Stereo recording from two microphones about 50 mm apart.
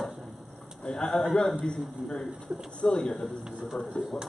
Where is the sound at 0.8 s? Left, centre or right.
Centre.